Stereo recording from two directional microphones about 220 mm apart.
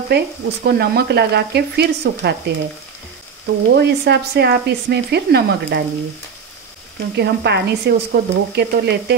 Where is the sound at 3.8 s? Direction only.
50° right (ahead or behind).